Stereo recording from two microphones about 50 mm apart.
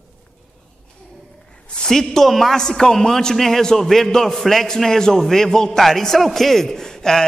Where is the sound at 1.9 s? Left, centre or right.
Centre.